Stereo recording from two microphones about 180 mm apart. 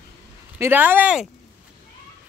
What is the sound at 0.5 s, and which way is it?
Speech, 10° right (ahead or behind).